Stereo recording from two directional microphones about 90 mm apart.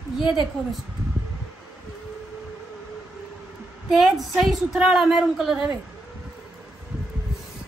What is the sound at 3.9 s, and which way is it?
A woman's voice, 5° right (ahead or behind).